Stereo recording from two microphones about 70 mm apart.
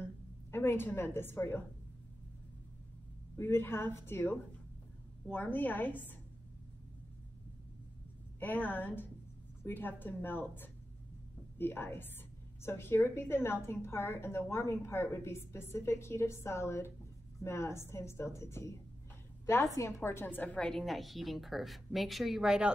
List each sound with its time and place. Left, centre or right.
0.5 s a woman's voice: left
3.3 s a woman's voice: left
8.4 s a woman's voice: left
20.4 s a woman's voice: centre